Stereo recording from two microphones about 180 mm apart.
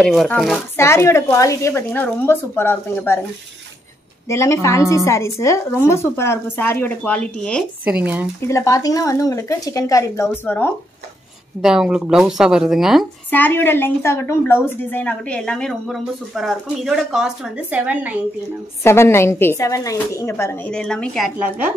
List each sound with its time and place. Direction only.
0.0 s speech: centre (ahead or behind)
0.7 s a woman's voice: 15° left (ahead or behind)
4.3 s a woman's voice: 15° left (ahead or behind)
7.8 s speech: 10° right (ahead or behind)
8.5 s a woman's voice: 15° left (ahead or behind)
11.6 s speech: 5° right (ahead or behind)
13.3 s a woman's voice: 10° left (ahead or behind); by 18.1 s 10° right (ahead or behind)
18.8 s a woman's voice: 15° left (ahead or behind)